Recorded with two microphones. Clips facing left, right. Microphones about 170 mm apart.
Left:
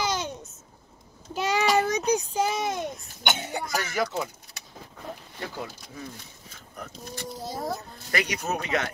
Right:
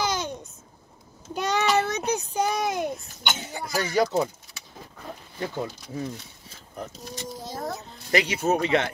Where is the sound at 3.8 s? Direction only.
30° right (ahead or behind).